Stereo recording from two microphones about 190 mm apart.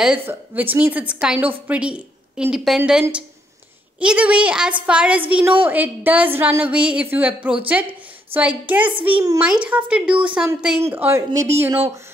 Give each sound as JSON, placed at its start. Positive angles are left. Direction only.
{"t": 0.0, "sound": "a woman's voice", "side_deg": -10}
{"t": 9.1, "sound": "a child's voice", "side_deg": -20}
{"t": 9.4, "sound": "a woman's voice", "side_deg": -5}